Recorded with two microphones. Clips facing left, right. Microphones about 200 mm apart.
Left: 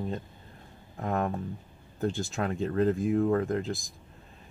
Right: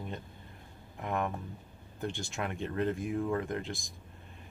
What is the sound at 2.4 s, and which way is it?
Speech, 35° left (ahead or behind).